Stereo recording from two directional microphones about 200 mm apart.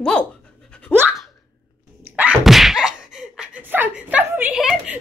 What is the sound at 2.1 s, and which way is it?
Sneeze, 5° right (ahead or behind).